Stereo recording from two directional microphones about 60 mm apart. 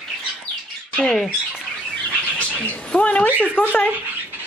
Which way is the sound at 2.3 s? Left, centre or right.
Left.